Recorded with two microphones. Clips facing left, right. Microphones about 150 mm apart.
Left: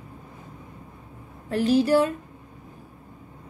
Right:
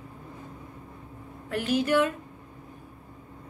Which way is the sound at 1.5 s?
35° left (ahead or behind).